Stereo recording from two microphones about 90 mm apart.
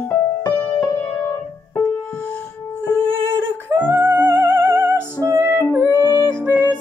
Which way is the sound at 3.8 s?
25° right (ahead or behind).